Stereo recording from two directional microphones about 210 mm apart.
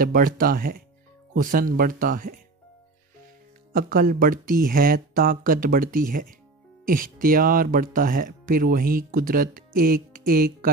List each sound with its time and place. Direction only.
0.0 s speech: 45° right (ahead or behind)
3.7 s speech: 45° right (ahead or behind)